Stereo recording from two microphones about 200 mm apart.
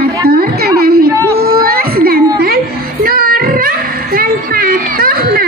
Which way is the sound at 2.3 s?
50° right (ahead or behind).